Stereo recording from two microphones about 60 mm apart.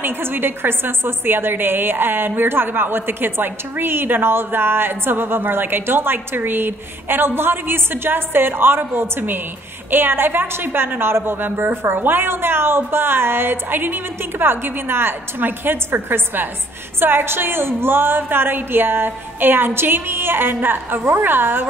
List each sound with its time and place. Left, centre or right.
0.0 s a woman's voice: right